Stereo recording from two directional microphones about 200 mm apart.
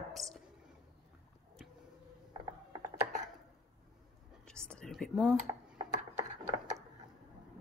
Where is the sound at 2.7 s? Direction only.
40° right (ahead or behind).